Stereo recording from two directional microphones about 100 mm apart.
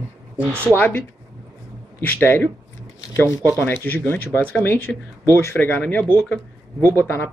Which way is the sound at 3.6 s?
20° left (ahead or behind).